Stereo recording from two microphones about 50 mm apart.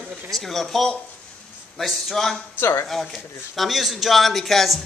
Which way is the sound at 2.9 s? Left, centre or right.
Centre.